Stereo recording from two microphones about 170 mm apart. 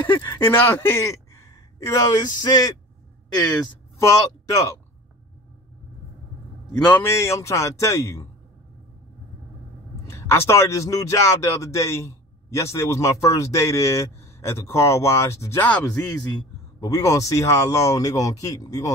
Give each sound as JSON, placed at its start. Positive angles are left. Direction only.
{"t": 0.0, "sound": "speech", "side_deg": 15}
{"t": 4.0, "sound": "speech", "side_deg": 20}
{"t": 6.9, "sound": "speech", "side_deg": 15}
{"t": 10.0, "sound": "speech", "side_deg": 15}
{"t": 16.8, "sound": "speech", "side_deg": 20}